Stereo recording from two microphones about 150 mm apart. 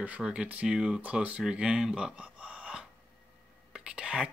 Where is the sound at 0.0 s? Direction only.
10° right (ahead or behind).